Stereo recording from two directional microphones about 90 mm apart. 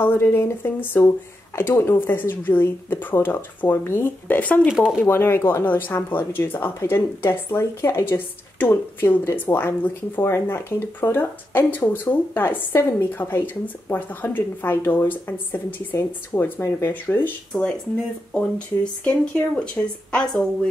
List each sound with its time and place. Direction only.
0.0 s speech: 25° left (ahead or behind)
4.7 s speech: 5° right (ahead or behind)
5.0 s speech: 25° left (ahead or behind)
17.5 s speech: 10° left (ahead or behind)
19.0 s speech: 10° left (ahead or behind)